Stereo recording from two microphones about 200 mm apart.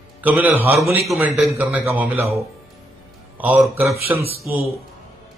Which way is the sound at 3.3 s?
10° right (ahead or behind).